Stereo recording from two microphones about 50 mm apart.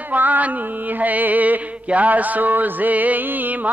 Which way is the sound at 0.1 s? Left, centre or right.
Right.